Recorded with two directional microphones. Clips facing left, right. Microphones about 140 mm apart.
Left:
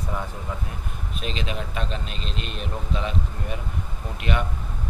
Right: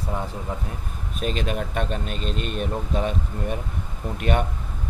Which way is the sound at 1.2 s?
50° right (ahead or behind).